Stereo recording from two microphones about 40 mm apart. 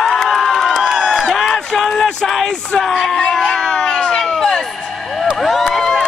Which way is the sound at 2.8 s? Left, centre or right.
Centre.